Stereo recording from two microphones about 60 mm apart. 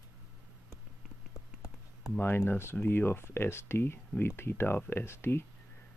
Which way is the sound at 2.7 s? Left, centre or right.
Left.